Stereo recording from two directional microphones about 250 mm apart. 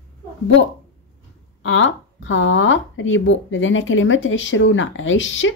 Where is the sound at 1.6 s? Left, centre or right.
Left.